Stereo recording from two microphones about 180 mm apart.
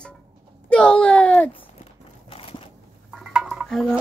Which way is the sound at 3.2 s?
5° right (ahead or behind).